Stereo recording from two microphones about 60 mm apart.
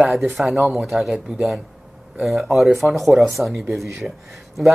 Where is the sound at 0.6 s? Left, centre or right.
Right.